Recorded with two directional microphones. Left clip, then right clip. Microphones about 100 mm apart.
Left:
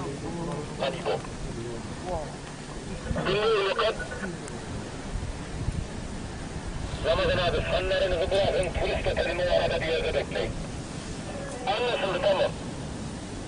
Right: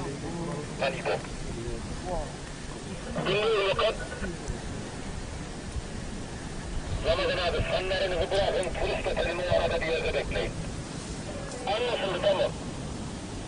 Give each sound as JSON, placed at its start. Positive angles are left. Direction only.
{"t": 0.7, "sound": "speech", "side_deg": -15}
{"t": 3.2, "sound": "speech", "side_deg": 0}
{"t": 7.1, "sound": "speech", "side_deg": 0}
{"t": 11.6, "sound": "speech", "side_deg": 10}